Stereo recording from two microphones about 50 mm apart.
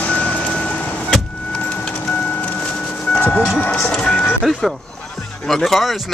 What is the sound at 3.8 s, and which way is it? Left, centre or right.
Speech, centre.